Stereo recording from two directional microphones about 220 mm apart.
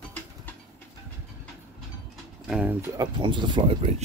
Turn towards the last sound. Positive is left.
turn(degrees=-20)  # may be behind; listen again after turning